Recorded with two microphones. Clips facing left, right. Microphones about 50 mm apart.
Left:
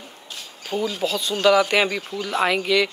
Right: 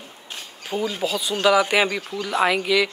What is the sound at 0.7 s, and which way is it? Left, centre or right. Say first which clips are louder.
Speech: left 1 dB; centre.